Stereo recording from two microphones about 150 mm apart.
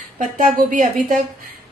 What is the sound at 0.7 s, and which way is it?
Speech, 60° right (ahead or behind).